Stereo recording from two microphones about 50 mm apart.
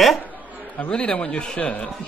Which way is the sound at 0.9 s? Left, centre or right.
Centre.